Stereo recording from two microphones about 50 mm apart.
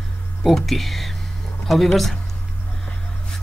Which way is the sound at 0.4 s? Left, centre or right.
Centre.